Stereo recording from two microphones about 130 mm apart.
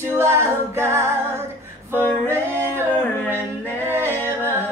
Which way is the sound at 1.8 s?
15° left (ahead or behind).